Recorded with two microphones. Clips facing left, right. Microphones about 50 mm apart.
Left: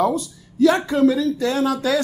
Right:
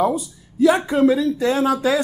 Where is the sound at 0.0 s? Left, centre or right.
Centre.